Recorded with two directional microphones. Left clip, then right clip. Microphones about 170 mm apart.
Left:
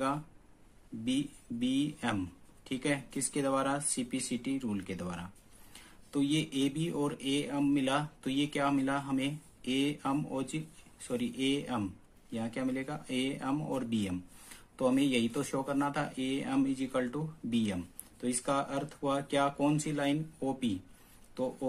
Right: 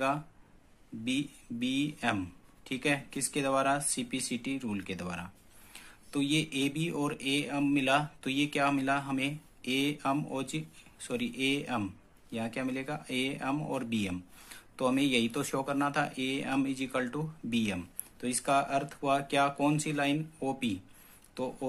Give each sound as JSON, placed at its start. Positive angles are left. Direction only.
{"t": 1.0, "sound": "a man's voice", "side_deg": 0}